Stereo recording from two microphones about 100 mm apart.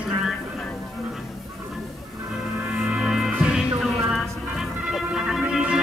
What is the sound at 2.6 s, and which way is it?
Music, 5° right (ahead or behind).